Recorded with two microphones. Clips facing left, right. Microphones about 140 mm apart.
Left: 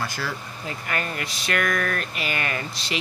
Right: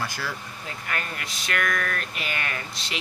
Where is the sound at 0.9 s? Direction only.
Centre (ahead or behind).